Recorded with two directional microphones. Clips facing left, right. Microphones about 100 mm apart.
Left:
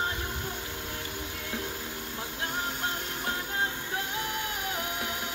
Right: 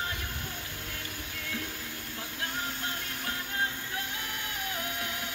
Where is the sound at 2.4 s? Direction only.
25° left (ahead or behind).